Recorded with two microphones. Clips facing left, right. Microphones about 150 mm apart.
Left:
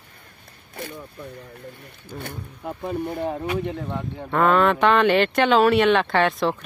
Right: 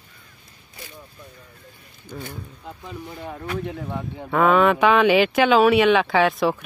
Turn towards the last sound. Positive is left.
turn(degrees=0)  # may be behind; listen again after turning